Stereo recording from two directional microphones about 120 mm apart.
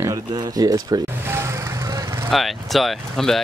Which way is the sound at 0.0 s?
30° right (ahead or behind).